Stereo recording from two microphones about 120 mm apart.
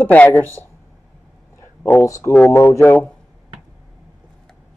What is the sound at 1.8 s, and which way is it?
A man's voice, 20° left (ahead or behind).